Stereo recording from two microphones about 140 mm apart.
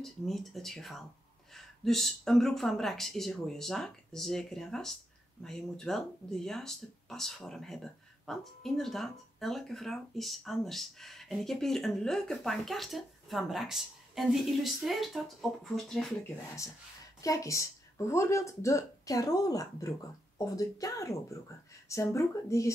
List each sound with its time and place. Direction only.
0.0 s speech: centre (ahead or behind)
16.6 s speech: 25° left (ahead or behind)